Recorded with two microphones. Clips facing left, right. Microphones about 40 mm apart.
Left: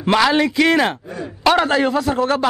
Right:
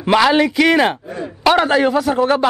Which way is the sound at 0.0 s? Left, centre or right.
Centre.